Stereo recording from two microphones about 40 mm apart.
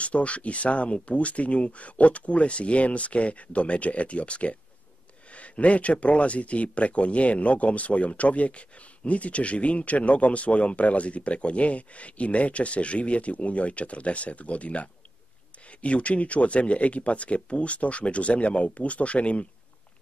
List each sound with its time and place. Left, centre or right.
0.0 s speech: left